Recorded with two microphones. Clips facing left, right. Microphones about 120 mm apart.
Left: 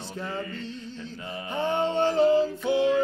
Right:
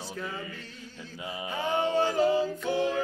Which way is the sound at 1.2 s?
10° right (ahead or behind).